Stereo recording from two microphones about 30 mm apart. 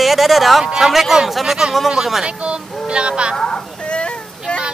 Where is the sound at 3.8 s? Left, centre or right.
Left.